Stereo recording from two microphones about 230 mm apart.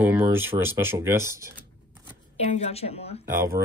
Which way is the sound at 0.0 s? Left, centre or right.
Centre.